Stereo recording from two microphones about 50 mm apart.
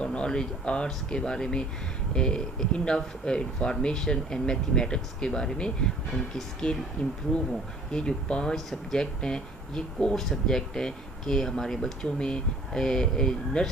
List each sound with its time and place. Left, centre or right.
0.0 s speech: centre
8.5 s speech: centre
9.0 s speech: centre